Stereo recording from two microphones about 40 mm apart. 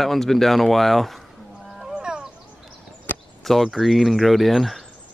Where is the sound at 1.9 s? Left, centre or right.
Right.